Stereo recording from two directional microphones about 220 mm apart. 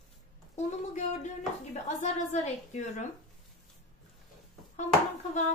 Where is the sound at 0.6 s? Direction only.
30° left (ahead or behind).